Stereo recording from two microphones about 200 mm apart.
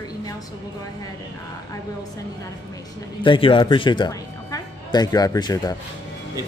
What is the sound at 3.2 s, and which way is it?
Speech, 25° left (ahead or behind).